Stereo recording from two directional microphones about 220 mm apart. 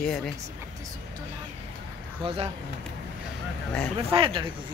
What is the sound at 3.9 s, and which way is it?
Speech, 25° right (ahead or behind).